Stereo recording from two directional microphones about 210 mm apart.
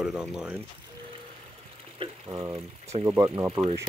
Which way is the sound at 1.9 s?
20° right (ahead or behind).